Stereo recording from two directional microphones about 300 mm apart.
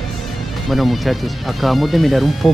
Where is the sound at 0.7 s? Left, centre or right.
Centre.